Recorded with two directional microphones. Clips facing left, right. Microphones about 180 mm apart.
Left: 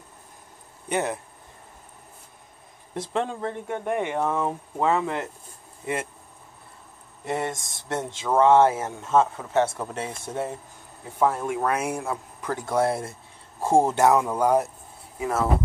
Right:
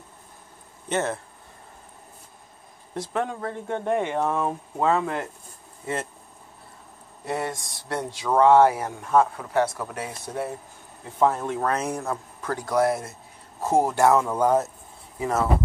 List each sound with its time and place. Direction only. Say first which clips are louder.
0.8 s speech: even; 15° left (ahead or behind)
2.9 s speech: even; 25° left (ahead or behind)
3.6 s speech: right 3 dB; 15° left (ahead or behind)
7.2 s speech: left 1 dB; 20° left (ahead or behind)
11.1 s speech: right 1 dB; 10° left (ahead or behind)